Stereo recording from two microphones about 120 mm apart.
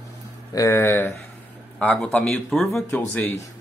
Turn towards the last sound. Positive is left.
turn(degrees=15)  # may be behind; listen again after turning